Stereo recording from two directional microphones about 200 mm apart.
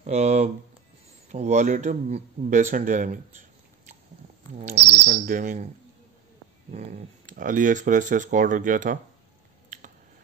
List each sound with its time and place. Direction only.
0.0 s speech: 35° right (ahead or behind)
4.7 s bird: 55° right (ahead or behind); by 5.7 s 40° right (ahead or behind)
6.7 s speech: 35° right (ahead or behind)